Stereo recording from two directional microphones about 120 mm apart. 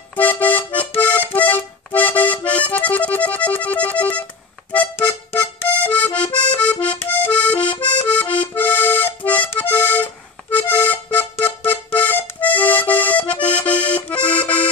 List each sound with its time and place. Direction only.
0.1 s accordion: 15° left (ahead or behind)
0.7 s music: 10° left (ahead or behind)
4.7 s accordion: 15° left (ahead or behind)
6.2 s accordion: 40° left (ahead or behind)
6.5 s accordion: 10° left (ahead or behind)
7.6 s accordion: 45° left (ahead or behind)
8.0 s accordion: 10° left (ahead or behind)
11.7 s music: 15° left (ahead or behind)